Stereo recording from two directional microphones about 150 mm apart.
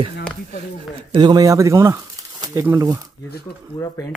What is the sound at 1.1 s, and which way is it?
Speech, 30° right (ahead or behind).